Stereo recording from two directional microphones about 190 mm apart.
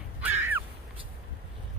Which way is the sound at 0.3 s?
10° right (ahead or behind).